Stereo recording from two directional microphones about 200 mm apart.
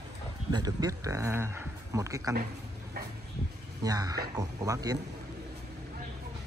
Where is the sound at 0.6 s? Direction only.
15° right (ahead or behind).